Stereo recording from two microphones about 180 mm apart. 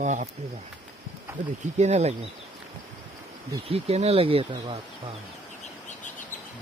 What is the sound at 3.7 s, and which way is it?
Speech, 35° right (ahead or behind).